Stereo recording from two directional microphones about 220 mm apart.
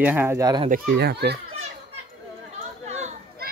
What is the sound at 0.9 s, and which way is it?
Speech, 50° right (ahead or behind).